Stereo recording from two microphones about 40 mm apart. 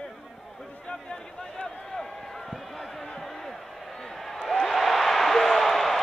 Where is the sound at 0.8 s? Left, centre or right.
Left; by 6.0 s centre.